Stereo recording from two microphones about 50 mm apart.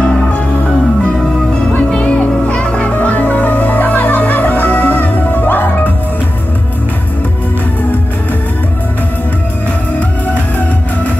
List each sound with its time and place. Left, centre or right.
0.0 s music: left
1.9 s music: left